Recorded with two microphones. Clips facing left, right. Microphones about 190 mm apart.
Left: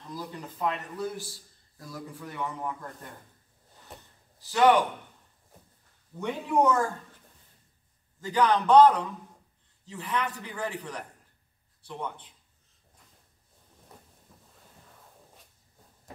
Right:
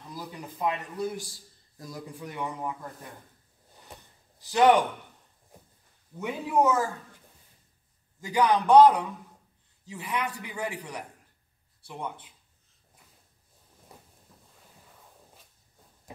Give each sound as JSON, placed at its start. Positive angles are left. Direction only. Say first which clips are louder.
{"t": 0.1, "sound": "a man's voice", "louder": "left 2 dB", "side_deg": -10}
{"t": 4.4, "sound": "a man's voice", "louder": "right 1 dB", "side_deg": -15}
{"t": 6.1, "sound": "a man's voice", "louder": "even", "side_deg": -5}
{"t": 8.2, "sound": "a man's voice", "louder": "even", "side_deg": -10}